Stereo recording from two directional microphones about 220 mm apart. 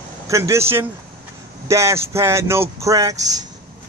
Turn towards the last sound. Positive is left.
turn(degrees=-15)  # may be behind; listen again after turning